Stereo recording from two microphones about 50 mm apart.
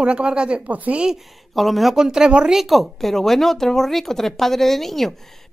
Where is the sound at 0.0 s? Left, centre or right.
Centre.